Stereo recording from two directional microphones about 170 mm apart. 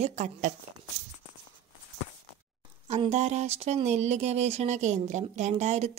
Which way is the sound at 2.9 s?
40° right (ahead or behind).